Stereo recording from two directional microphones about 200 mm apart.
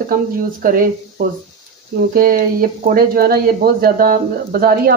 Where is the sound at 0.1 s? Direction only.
45° right (ahead or behind).